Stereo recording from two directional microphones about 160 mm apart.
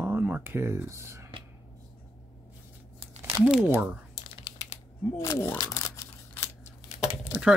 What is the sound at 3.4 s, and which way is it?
Speech, 5° right (ahead or behind).